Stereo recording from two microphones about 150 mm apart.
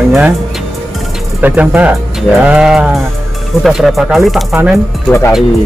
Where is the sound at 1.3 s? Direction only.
10° right (ahead or behind).